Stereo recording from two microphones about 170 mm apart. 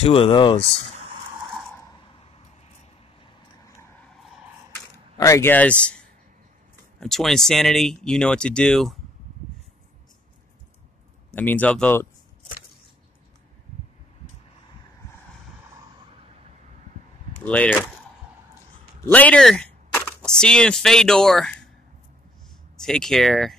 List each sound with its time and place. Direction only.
0.0 s speech: 35° left (ahead or behind)
5.1 s speech: 20° left (ahead or behind); by 8.9 s 5° left (ahead or behind)
11.3 s speech: 10° left (ahead or behind)
17.5 s speech: 10° left (ahead or behind)
19.1 s a sound: 5° left (ahead or behind)
20.3 s speech: 5° left (ahead or behind)
22.8 s speech: 5° left (ahead or behind)